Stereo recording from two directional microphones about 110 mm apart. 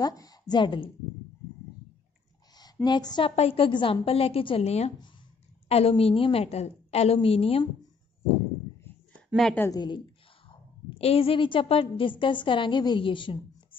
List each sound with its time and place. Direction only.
0.0 s a woman's voice: 35° left (ahead or behind)
2.5 s speech: 40° left (ahead or behind)
3.3 s a woman's voice: 65° left (ahead or behind)
9.7 s a woman's voice: 40° left (ahead or behind)
10.9 s a woman's voice: 65° left (ahead or behind)